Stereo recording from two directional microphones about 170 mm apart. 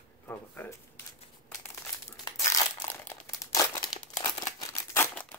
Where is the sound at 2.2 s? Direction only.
15° left (ahead or behind).